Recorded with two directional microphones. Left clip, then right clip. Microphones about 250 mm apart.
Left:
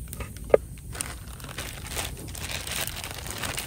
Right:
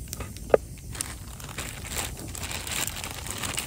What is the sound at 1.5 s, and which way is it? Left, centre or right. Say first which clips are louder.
Crumpling: even; centre.